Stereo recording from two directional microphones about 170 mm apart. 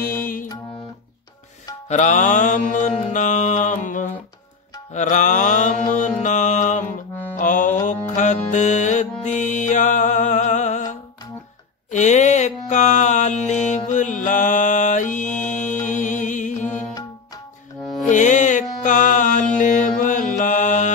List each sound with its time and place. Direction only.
0.0 s music: 55° left (ahead or behind)
1.9 s mantra: 45° left (ahead or behind)
7.3 s music: 50° left (ahead or behind)
11.9 s mantra: 45° left (ahead or behind)
18.0 s music: 45° left (ahead or behind)
18.9 s mantra: 50° left (ahead or behind)